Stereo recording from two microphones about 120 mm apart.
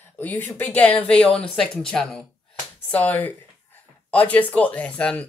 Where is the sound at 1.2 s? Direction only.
50° left (ahead or behind).